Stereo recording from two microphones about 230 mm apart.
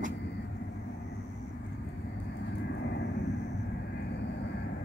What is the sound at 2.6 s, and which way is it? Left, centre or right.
Vehicle, left.